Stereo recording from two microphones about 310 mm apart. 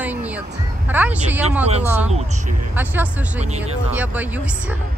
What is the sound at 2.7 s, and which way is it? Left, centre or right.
Speech, centre.